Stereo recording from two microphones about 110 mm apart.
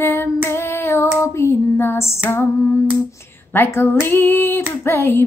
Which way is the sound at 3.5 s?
20° left (ahead or behind).